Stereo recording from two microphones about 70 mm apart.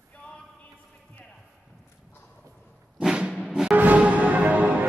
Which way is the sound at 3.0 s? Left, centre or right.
Centre.